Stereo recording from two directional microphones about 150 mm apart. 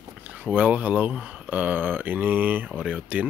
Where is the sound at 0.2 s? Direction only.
10° right (ahead or behind).